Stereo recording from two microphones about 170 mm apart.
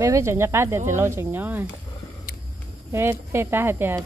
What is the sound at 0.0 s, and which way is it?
Speech, 15° right (ahead or behind).